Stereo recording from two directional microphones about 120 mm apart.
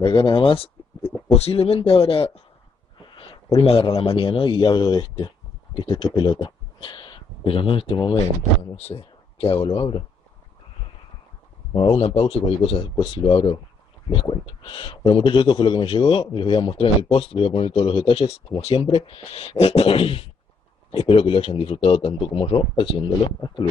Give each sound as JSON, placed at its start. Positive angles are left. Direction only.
{"t": 0.0, "sound": "speech", "side_deg": 45}
{"t": 3.0, "sound": "a sound", "side_deg": 40}
{"t": 3.5, "sound": "a man's voice", "side_deg": 55}
{"t": 8.7, "sound": "speech", "side_deg": 60}
{"t": 11.7, "sound": "a man's voice", "side_deg": 45}
{"t": 12.9, "sound": "a man's voice", "side_deg": 40}